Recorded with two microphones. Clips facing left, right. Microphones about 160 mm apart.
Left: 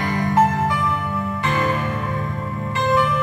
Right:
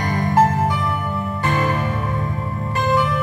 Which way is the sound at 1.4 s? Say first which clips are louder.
Right 1 dB; 30° right (ahead or behind).